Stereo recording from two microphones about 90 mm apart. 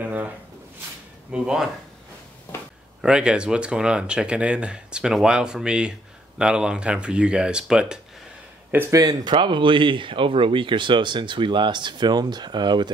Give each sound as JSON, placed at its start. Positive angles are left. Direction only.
{"t": 0.0, "sound": "speech", "side_deg": -15}
{"t": 1.3, "sound": "speech", "side_deg": -10}
{"t": 3.0, "sound": "speech", "side_deg": -10}
{"t": 8.9, "sound": "speech", "side_deg": -40}
{"t": 9.3, "sound": "speech", "side_deg": -65}